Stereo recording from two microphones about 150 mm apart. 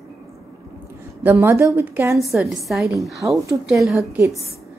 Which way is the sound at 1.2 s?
15° right (ahead or behind).